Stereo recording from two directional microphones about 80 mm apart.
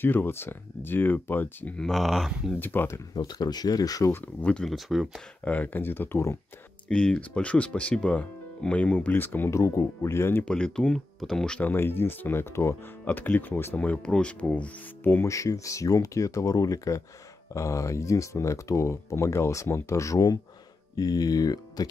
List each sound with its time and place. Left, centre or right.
0.0 s speech: left
1.8 s speech: centre
2.6 s speech: left
3.2 s speech: left
4.1 s speech: centre
4.6 s speech: centre
5.4 s speech: centre
6.9 s speech: centre
9.5 s speech: left
10.4 s speech: centre
11.7 s speech: left
13.0 s speech: left
13.7 s speech: centre
15.2 s speech: left